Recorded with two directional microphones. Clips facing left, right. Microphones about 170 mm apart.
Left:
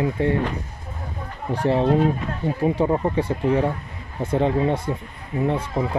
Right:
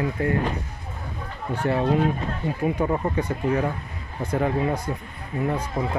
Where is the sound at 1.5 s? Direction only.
30° left (ahead or behind).